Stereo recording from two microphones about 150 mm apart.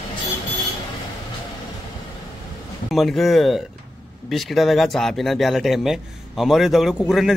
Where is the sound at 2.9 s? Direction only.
Centre (ahead or behind).